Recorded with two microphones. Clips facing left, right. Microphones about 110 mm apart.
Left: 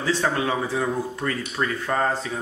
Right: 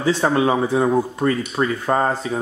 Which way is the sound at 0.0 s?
25° right (ahead or behind).